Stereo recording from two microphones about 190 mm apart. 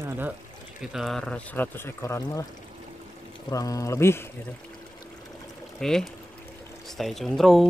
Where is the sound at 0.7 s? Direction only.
Centre (ahead or behind); by 2.4 s 15° left (ahead or behind).